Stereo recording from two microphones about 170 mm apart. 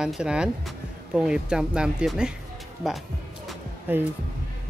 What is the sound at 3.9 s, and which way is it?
Speech, 10° right (ahead or behind).